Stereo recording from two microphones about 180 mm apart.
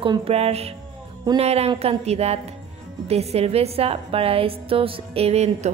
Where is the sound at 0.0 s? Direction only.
30° right (ahead or behind).